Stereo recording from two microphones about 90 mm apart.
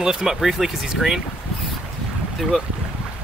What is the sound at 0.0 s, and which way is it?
Speech, 5° right (ahead or behind).